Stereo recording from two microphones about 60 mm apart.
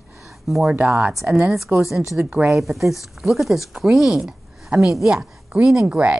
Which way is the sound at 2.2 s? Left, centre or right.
Right.